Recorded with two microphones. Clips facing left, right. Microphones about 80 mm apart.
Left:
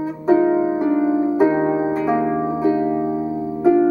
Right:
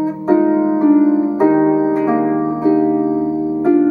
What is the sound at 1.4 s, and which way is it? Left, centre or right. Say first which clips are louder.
Harp: right 7 dB; centre.